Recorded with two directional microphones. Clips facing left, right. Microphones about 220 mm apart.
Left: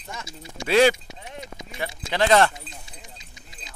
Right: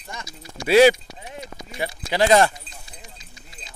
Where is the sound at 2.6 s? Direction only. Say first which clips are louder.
Left 1 dB; 20° left (ahead or behind).